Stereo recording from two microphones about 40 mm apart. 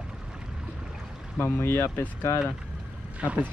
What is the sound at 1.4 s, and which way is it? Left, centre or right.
Speech, left.